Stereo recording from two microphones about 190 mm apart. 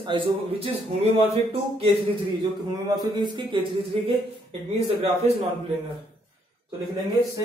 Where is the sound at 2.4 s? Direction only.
20° right (ahead or behind).